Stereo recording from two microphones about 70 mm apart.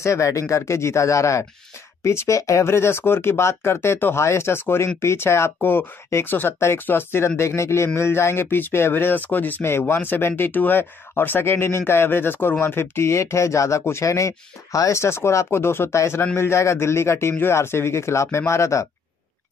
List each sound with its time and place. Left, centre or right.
0.0 s speech: left